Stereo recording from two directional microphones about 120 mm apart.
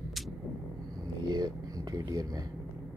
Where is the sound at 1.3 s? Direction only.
30° right (ahead or behind).